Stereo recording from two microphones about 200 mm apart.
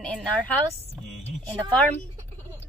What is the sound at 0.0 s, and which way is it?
Speech, 5° left (ahead or behind).